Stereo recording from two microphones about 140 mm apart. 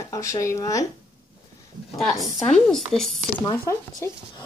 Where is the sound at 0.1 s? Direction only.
20° left (ahead or behind).